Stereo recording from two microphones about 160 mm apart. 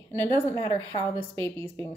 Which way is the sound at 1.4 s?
15° left (ahead or behind).